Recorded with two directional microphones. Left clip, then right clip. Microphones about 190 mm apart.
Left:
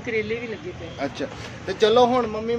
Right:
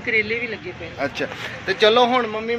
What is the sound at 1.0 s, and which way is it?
Speech, 20° right (ahead or behind).